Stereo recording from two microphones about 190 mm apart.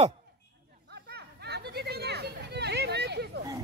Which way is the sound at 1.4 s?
60° right (ahead or behind).